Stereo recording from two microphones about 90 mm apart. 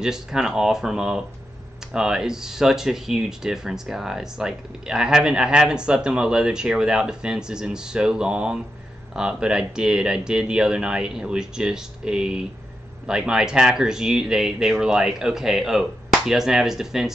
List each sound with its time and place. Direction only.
0.0 s speech: 5° right (ahead or behind)